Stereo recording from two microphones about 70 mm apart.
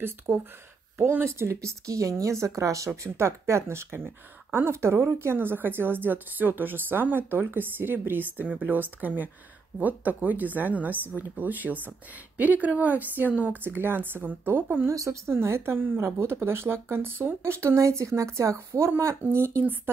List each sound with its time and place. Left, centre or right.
0.3 s speech: right
1.2 s speech: right
14.9 s speech: right